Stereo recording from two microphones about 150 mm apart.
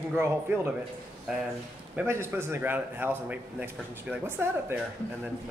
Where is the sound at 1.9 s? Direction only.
15° right (ahead or behind).